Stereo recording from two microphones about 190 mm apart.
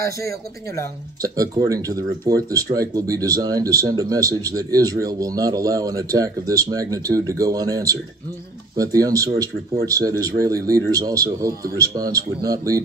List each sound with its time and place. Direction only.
0.0 s speech: 15° left (ahead or behind)
1.2 s speech: 20° right (ahead or behind)